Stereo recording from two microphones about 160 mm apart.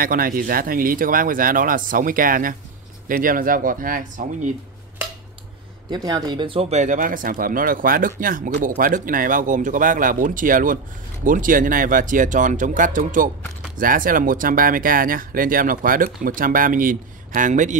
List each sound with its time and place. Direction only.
0.0 s speech: 60° right (ahead or behind)
5.9 s speech: 25° right (ahead or behind); by 17.7 s 50° right (ahead or behind)